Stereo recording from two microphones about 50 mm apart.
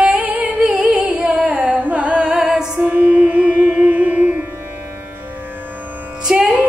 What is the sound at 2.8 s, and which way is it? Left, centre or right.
Music, right.